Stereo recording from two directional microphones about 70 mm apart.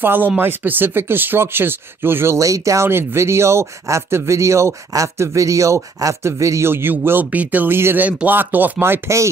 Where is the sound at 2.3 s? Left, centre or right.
Right.